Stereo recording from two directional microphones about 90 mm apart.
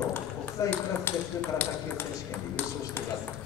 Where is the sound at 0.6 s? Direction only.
35° left (ahead or behind).